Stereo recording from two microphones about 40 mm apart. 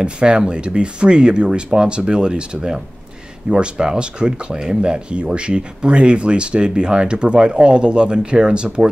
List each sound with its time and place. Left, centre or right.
0.0 s speech: right